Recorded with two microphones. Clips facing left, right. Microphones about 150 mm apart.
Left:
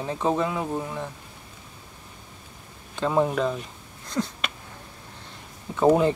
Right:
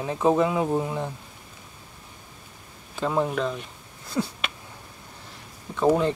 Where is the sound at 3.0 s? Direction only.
Centre (ahead or behind).